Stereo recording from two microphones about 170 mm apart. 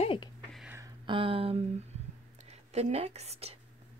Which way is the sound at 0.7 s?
25° right (ahead or behind).